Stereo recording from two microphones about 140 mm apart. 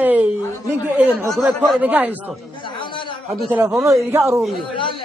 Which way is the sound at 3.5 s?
20° right (ahead or behind).